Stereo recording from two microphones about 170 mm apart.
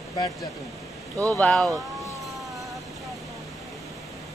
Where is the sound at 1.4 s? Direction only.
Centre (ahead or behind).